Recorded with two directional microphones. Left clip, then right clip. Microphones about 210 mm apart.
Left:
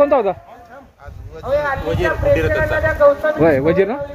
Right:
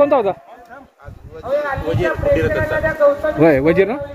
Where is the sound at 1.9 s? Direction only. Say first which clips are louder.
Even; 50° left (ahead or behind).